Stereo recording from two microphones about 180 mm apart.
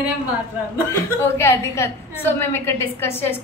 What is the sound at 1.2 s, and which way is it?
A woman's voice, 15° left (ahead or behind).